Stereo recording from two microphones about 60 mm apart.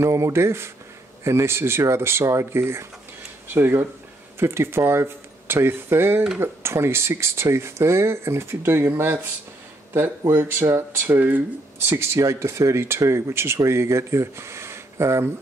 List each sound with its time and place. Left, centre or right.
0.0 s speech: right
10.2 s speech: right
11.9 s speech: right